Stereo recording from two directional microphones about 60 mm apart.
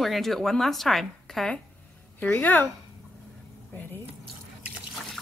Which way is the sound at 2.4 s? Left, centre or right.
Left.